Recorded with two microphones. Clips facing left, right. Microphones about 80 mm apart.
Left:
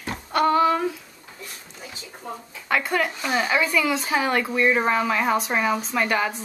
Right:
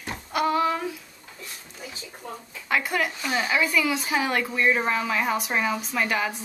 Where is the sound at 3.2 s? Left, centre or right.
Centre.